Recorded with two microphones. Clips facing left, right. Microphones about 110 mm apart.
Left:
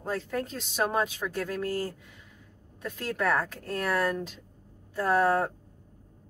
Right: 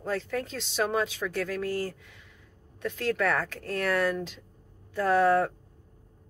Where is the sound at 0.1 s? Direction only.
40° left (ahead or behind).